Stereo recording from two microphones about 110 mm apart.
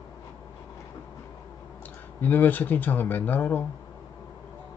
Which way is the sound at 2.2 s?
15° left (ahead or behind).